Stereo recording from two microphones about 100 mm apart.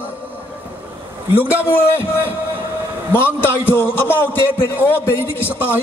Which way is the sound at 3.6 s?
20° left (ahead or behind).